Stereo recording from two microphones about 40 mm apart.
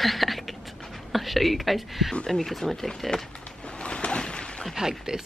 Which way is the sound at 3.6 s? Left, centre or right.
Left.